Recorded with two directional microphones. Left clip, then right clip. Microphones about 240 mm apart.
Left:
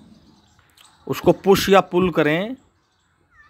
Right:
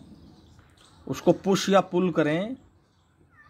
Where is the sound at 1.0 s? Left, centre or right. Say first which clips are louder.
Left 7 dB; left.